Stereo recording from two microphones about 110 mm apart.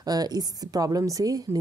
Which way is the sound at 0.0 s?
35° right (ahead or behind).